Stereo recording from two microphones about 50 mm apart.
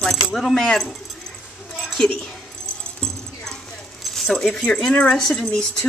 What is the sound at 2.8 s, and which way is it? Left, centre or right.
Music, centre.